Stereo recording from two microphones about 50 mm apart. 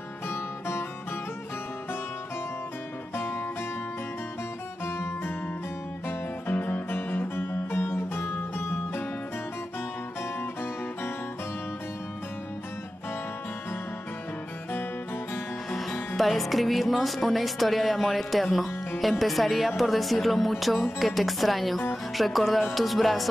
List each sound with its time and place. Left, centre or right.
0.3 s music: left
3.2 s music: left
4.8 s music: left
15.7 s music: centre
16.2 s speech: centre